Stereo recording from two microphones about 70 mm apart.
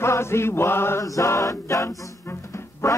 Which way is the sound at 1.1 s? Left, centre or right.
Left.